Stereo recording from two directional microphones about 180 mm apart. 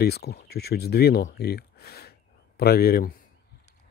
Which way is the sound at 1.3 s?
60° left (ahead or behind).